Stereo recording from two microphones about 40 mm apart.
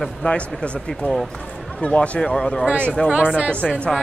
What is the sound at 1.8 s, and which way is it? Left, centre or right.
Speech, left.